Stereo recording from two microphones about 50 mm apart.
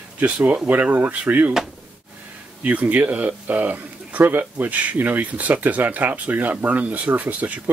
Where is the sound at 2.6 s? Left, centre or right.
Right.